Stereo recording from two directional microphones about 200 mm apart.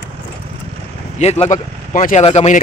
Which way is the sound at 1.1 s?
35° left (ahead or behind).